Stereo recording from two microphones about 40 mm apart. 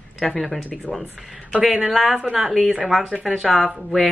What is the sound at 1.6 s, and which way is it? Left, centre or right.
A woman's voice, centre.